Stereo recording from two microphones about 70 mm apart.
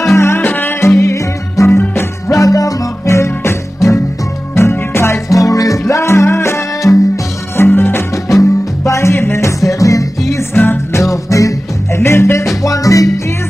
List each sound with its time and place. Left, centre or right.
0.1 s music: left
1.8 s music: left
2.3 s music: left
3.2 s music: left
5.3 s music: left
6.8 s music: left
7.5 s music: left
8.3 s music: left
10.3 s music: left
12.6 s music: left